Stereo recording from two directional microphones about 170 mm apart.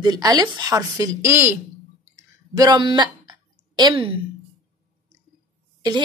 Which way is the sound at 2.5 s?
25° right (ahead or behind).